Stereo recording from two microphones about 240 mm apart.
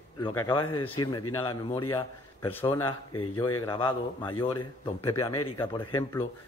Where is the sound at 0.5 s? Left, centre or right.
Centre.